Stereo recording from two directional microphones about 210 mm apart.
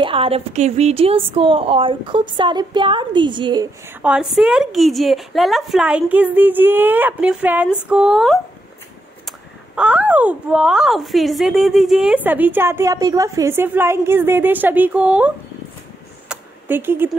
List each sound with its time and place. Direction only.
0.0 s speech: 25° right (ahead or behind)
3.8 s a woman's voice: 5° right (ahead or behind)
9.8 s speech: 5° right (ahead or behind)
16.3 s a sound: 10° right (ahead or behind)